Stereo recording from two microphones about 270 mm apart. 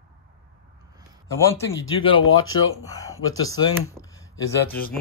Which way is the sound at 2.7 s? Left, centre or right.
Centre.